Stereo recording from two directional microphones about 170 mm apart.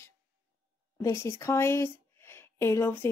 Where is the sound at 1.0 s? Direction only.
15° left (ahead or behind).